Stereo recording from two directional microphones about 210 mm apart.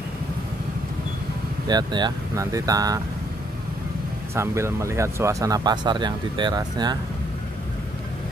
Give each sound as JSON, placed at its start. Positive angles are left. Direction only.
{"t": 1.7, "sound": "speech", "side_deg": -20}
{"t": 4.4, "sound": "speech", "side_deg": -15}